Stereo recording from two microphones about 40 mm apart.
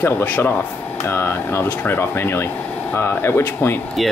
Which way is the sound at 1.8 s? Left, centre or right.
Left.